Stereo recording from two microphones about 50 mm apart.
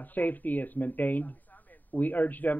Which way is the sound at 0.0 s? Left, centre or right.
Left.